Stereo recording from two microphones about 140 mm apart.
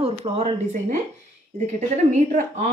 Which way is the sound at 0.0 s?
50° right (ahead or behind).